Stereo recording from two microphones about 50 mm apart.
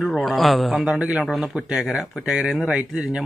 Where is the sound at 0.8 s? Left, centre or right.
Right.